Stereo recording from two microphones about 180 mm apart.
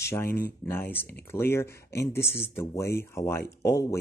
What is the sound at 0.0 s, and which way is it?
Speech, 15° left (ahead or behind).